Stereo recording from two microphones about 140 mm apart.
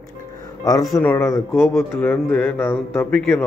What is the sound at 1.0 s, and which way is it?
Speech, 15° left (ahead or behind).